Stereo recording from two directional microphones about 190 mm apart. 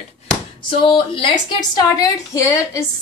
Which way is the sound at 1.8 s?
15° left (ahead or behind).